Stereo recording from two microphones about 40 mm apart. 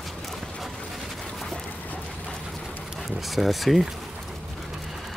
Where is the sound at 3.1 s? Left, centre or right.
Centre.